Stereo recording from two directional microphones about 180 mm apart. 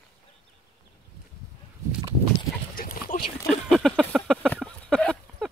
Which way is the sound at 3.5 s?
Centre (ahead or behind).